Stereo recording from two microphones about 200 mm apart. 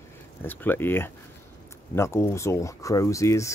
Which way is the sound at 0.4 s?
10° left (ahead or behind).